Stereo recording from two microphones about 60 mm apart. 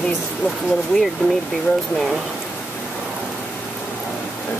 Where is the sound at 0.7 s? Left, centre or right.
Centre.